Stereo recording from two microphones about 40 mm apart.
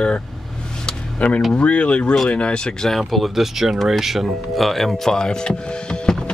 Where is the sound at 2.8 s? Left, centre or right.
Centre.